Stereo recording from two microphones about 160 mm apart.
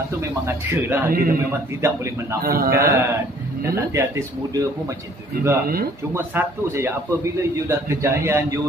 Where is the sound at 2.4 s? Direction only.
70° right (ahead or behind).